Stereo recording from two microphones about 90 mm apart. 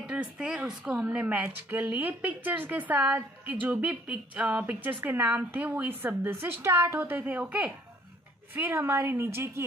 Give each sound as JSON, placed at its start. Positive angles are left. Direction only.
{"t": 0.1, "sound": "speech", "side_deg": -10}